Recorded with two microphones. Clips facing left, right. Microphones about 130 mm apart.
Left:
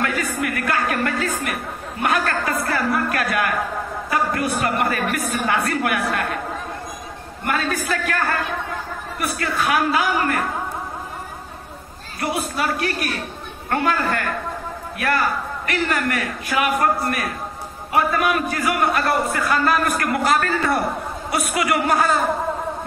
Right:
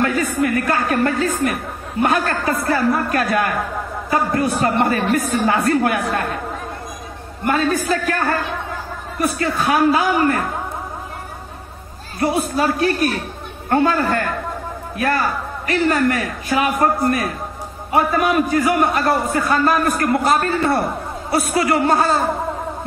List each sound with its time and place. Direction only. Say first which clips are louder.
0.0 s a woman's voice: right 5 dB; 30° right (ahead or behind)
7.4 s a man's voice: right 5 dB; 30° right (ahead or behind)
12.2 s a man's voice: right 5 dB; 30° right (ahead or behind)